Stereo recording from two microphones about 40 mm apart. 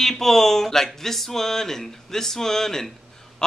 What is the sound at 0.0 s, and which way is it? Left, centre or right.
Speech, centre.